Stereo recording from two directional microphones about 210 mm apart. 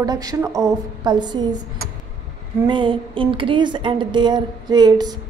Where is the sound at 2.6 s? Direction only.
25° right (ahead or behind).